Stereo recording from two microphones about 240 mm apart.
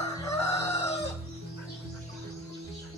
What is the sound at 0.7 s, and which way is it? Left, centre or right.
Chicken, left.